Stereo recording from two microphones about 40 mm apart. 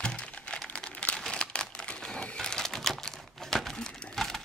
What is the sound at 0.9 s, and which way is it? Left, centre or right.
Crumpling, left.